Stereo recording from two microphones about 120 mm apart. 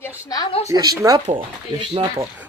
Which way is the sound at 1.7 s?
40° right (ahead or behind).